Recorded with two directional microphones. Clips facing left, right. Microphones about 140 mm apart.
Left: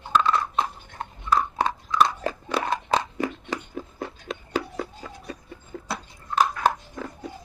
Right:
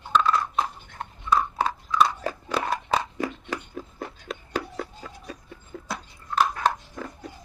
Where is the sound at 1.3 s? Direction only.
5° right (ahead or behind).